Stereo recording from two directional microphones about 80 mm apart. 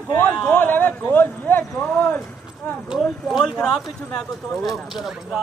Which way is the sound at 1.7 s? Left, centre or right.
Centre.